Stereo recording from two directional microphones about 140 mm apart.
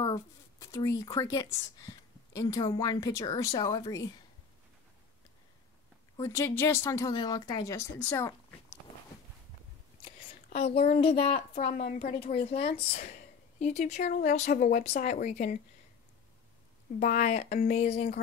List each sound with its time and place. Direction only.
0.0 s a woman's voice: 25° left (ahead or behind)
6.1 s speech: 20° left (ahead or behind)
10.5 s a woman's voice: 50° left (ahead or behind)
13.0 s speech: 55° left (ahead or behind)
17.0 s speech: 65° left (ahead or behind)